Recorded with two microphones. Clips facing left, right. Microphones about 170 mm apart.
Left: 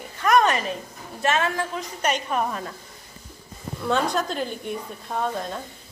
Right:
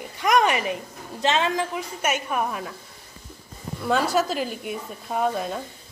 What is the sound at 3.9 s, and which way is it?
Speech, 5° right (ahead or behind).